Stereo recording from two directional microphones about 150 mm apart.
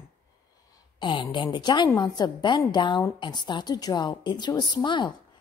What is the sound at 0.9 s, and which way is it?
A woman's voice, 30° left (ahead or behind).